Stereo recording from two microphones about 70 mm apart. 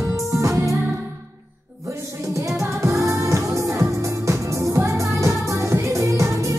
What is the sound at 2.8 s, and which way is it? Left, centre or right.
Music, right.